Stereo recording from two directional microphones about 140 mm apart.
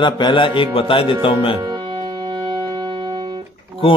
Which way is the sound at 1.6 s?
30° right (ahead or behind).